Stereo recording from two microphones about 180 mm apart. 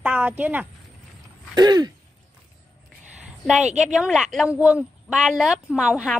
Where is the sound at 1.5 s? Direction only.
25° right (ahead or behind).